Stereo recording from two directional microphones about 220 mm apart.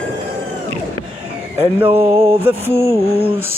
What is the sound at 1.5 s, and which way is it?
Mantra, 10° right (ahead or behind).